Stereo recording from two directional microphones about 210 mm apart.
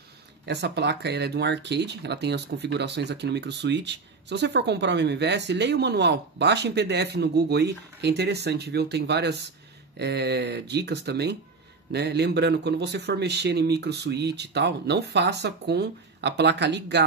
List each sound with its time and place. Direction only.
0.5 s speech: 50° right (ahead or behind)